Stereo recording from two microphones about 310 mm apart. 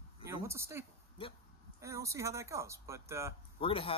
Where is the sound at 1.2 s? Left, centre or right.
Centre.